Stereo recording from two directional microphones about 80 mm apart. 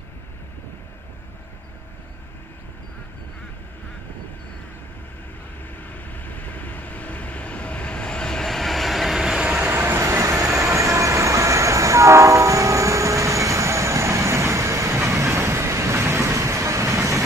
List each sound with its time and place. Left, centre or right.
5.8 s vehicle: left; by 9.8 s centre
9.8 s vehicle: right